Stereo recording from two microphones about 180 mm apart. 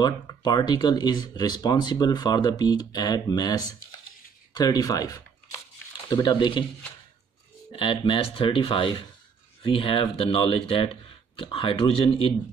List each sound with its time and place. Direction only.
0.0 s speech: 25° left (ahead or behind)
7.7 s speech: 30° left (ahead or behind)